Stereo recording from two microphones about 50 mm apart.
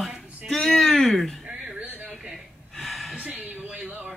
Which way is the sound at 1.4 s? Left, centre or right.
Centre.